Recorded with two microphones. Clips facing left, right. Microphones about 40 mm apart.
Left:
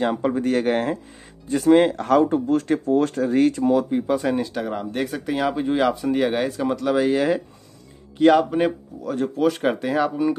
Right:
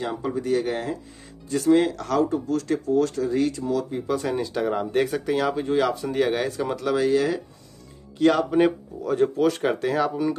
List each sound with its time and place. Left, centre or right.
0.0 s speech: left
4.1 s speech: centre
4.6 s speech: centre
5.3 s speech: centre
7.1 s speech: left
8.2 s speech: centre